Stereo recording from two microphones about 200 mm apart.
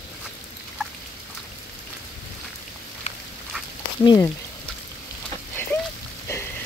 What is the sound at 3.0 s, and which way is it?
Frog, 35° left (ahead or behind).